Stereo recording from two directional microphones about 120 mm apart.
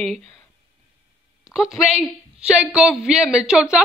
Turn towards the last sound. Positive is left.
turn(degrees=-5)  # may be behind; listen again after turning